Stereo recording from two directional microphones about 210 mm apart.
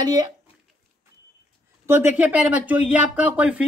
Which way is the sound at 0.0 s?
20° right (ahead or behind).